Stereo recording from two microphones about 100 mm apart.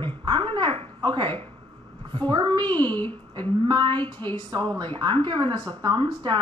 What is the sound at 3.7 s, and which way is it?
Speech, 50° right (ahead or behind).